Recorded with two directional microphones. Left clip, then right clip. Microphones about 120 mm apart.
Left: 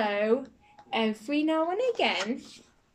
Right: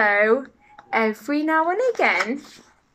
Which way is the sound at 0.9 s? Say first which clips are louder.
Right 7 dB; 20° right (ahead or behind).